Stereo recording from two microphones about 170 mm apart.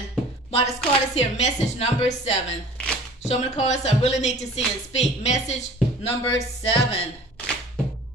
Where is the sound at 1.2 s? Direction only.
40° left (ahead or behind).